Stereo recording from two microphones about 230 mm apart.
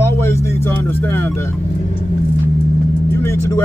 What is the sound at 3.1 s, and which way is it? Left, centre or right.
Speech, centre.